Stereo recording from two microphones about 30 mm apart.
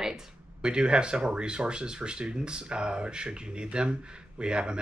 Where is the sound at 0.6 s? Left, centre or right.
Right.